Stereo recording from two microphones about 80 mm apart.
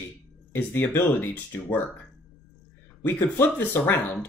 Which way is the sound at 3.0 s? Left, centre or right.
Left.